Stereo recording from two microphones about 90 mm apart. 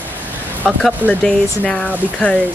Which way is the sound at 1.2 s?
10° left (ahead or behind).